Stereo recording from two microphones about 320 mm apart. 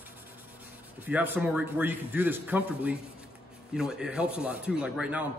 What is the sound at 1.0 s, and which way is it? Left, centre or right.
Speech, centre.